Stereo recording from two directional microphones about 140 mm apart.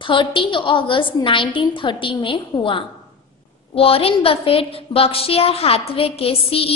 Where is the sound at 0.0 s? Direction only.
35° left (ahead or behind).